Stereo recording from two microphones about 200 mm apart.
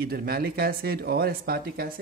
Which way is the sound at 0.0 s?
50° right (ahead or behind).